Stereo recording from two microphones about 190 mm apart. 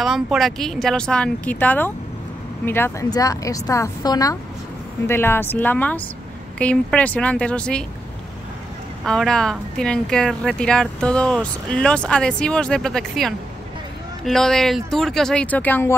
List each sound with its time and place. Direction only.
0.0 s speech: centre (ahead or behind)
9.0 s speech: 5° left (ahead or behind)